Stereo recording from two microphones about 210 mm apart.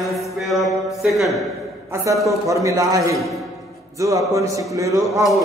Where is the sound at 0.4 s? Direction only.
Centre (ahead or behind).